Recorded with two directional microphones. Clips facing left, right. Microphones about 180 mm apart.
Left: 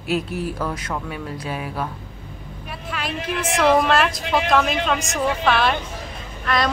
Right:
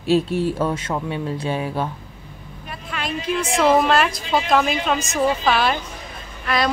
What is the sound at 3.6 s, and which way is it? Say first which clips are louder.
Speech: even; centre (ahead or behind).